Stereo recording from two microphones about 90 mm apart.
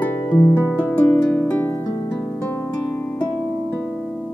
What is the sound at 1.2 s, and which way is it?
Music, 10° left (ahead or behind).